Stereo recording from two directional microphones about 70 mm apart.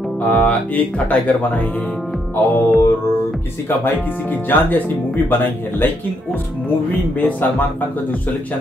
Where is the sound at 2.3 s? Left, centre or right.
Left.